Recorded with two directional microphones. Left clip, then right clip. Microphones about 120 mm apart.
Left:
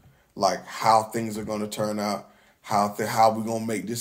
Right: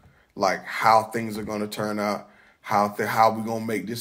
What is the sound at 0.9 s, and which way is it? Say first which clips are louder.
Speech: right 1 dB; 15° left (ahead or behind).